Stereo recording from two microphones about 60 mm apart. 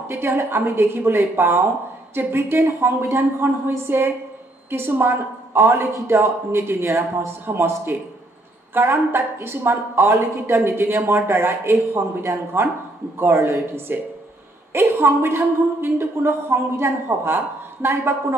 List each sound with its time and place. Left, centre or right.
0.1 s a woman's voice: right
5.9 s a woman's voice: right